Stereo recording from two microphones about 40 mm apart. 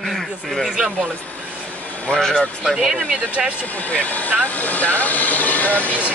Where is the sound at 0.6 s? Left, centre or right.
Right.